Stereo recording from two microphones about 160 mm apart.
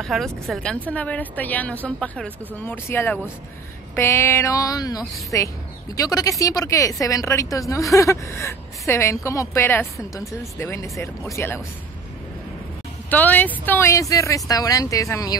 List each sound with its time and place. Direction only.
0.0 s a woman's voice: centre (ahead or behind); by 11.6 s 15° left (ahead or behind)
13.1 s a woman's voice: 10° left (ahead or behind)